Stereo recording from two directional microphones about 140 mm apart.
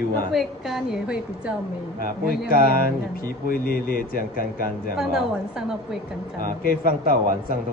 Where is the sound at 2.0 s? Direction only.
90° left.